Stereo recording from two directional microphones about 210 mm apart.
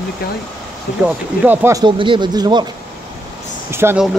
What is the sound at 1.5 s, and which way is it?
Speech, 15° right (ahead or behind).